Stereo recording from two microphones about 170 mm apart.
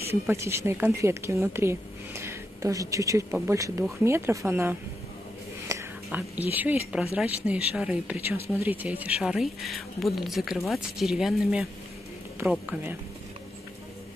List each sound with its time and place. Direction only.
0.1 s a woman's voice: 15° right (ahead or behind)